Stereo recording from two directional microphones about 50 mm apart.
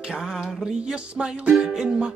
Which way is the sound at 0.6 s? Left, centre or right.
Centre.